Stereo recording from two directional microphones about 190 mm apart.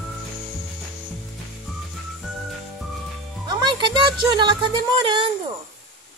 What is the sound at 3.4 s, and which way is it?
Speech, 25° right (ahead or behind).